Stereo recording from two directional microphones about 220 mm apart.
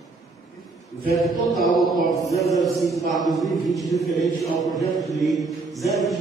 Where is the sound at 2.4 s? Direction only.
Centre (ahead or behind).